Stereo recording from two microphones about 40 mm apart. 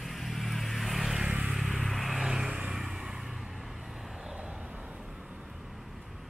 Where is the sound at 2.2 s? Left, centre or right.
Centre.